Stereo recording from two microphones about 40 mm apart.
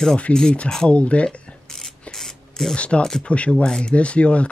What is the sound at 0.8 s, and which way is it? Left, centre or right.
Speech, left.